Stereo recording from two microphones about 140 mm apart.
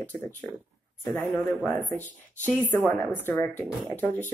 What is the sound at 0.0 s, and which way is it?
Speech, 15° left (ahead or behind).